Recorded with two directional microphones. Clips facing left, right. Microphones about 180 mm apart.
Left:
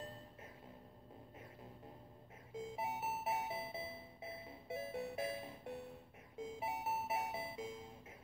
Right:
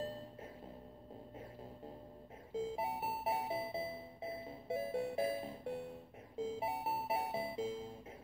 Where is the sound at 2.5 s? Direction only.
30° right (ahead or behind).